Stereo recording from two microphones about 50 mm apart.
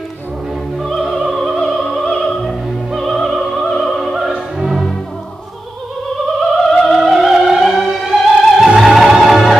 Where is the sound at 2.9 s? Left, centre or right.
Centre.